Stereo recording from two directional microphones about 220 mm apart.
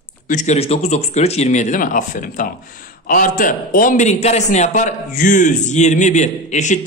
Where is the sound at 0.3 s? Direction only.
35° left (ahead or behind).